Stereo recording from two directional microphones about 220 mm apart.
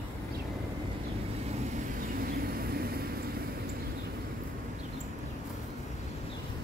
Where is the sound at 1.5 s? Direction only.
30° right (ahead or behind).